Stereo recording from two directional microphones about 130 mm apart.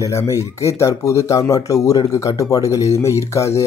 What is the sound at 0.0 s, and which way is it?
Speech, 25° left (ahead or behind).